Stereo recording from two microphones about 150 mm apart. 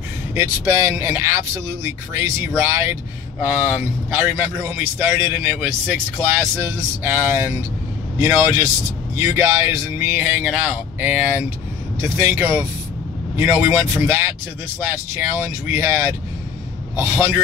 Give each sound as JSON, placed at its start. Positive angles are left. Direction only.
{"t": 0.3, "sound": "a man's voice", "side_deg": -15}